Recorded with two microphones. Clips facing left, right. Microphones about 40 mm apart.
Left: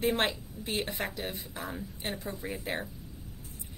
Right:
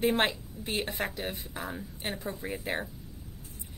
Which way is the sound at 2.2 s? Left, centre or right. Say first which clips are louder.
Right 2 dB; right.